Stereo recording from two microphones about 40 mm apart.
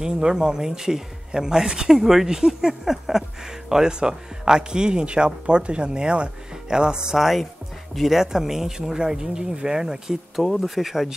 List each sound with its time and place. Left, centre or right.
0.0 s speech: centre
7.2 s speech: centre
10.4 s speech: centre